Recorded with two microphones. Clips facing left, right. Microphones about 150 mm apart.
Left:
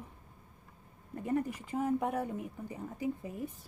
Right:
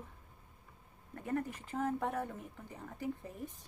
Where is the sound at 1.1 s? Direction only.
15° left (ahead or behind).